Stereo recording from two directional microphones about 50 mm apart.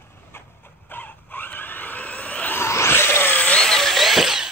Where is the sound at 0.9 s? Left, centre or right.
Left.